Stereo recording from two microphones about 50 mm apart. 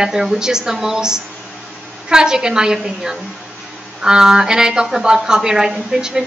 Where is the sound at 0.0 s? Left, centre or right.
Centre.